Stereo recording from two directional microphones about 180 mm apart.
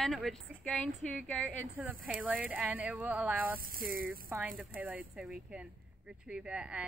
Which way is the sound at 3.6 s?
55° right (ahead or behind).